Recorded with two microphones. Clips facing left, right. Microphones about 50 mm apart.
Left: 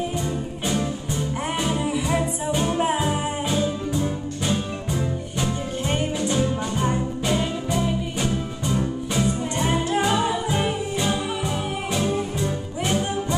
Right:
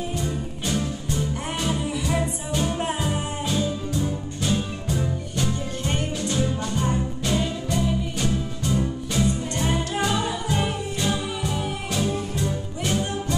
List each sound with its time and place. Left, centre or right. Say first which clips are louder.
0.7 s music: left 1 dB; centre